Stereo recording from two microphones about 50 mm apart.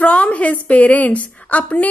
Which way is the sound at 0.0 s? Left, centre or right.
Left.